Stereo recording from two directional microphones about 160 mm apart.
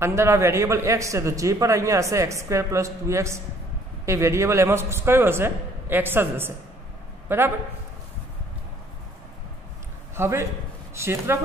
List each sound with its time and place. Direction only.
0.0 s a man's voice: 15° right (ahead or behind)
10.1 s a man's voice: 15° right (ahead or behind)